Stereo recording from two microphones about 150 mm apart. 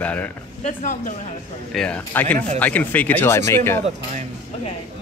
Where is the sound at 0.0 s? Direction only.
10° left (ahead or behind).